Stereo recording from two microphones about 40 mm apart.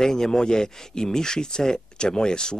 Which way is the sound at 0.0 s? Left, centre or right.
Centre.